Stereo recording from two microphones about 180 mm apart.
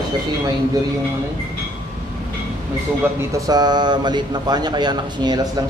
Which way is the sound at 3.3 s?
20° right (ahead or behind).